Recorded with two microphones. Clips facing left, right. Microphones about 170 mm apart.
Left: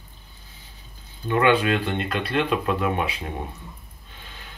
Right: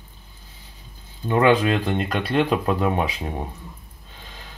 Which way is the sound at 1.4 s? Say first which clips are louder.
Right 2 dB; 35° right (ahead or behind).